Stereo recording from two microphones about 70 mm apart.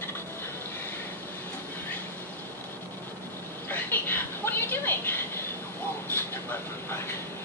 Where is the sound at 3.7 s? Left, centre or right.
Left.